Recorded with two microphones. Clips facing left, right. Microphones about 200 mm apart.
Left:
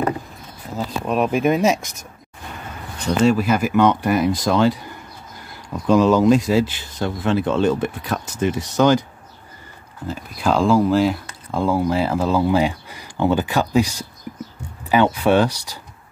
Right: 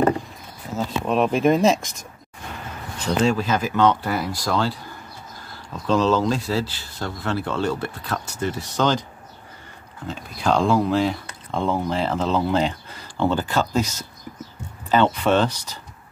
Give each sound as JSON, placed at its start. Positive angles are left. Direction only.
{"t": 0.7, "sound": "speech", "side_deg": 5}
{"t": 3.3, "sound": "speech", "side_deg": 10}
{"t": 10.0, "sound": "speech", "side_deg": 5}